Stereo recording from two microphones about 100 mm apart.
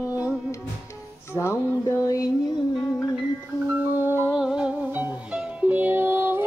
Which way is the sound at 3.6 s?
20° right (ahead or behind).